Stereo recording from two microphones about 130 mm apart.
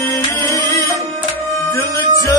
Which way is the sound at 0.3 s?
20° left (ahead or behind).